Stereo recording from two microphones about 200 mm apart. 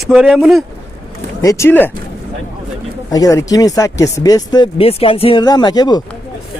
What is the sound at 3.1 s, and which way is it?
Speech, 15° left (ahead or behind).